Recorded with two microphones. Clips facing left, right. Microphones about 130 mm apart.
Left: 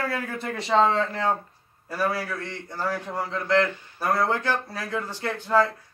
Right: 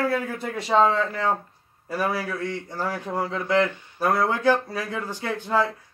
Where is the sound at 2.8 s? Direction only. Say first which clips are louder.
Right 1 dB; 15° right (ahead or behind).